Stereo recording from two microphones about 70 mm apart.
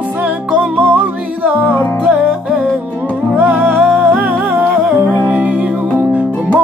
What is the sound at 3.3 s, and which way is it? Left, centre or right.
Music, right.